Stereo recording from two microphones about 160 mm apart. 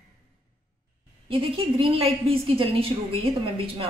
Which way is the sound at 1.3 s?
35° right (ahead or behind).